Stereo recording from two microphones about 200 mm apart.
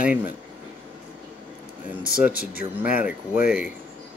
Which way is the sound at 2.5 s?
5° right (ahead or behind).